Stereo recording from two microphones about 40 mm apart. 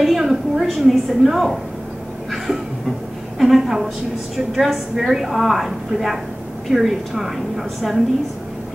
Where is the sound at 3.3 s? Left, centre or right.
Centre.